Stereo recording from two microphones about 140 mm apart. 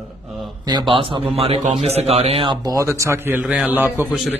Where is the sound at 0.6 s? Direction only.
35° right (ahead or behind).